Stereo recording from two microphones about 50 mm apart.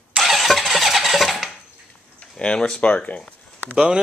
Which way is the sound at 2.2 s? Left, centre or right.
Centre.